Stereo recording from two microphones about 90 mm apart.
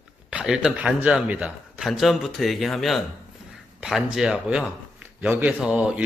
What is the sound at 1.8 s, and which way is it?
Speech, centre (ahead or behind).